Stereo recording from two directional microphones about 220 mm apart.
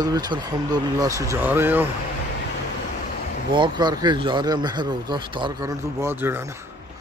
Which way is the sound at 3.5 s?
20° right (ahead or behind).